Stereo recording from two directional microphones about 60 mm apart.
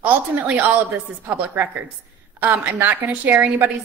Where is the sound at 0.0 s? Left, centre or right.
Right.